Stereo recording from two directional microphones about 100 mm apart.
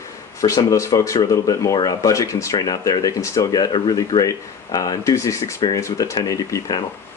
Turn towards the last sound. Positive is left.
turn(degrees=35)  # may be behind; listen again after turning